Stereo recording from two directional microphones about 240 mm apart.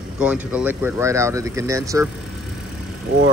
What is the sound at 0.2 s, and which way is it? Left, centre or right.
Speech, centre.